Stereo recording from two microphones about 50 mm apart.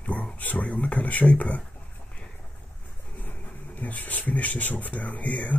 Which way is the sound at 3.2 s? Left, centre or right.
Left.